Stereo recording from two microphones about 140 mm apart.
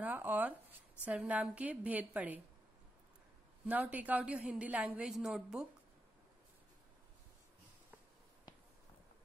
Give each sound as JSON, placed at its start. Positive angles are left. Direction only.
{"t": 0.0, "sound": "a woman's voice", "side_deg": -15}
{"t": 3.6, "sound": "a woman's voice", "side_deg": -10}